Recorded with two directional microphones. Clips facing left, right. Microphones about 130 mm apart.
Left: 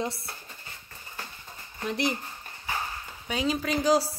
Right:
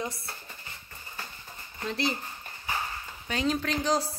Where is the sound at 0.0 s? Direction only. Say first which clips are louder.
Left 3 dB; 25° left (ahead or behind).